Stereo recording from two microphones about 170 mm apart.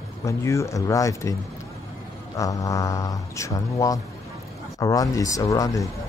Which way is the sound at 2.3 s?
20° left (ahead or behind).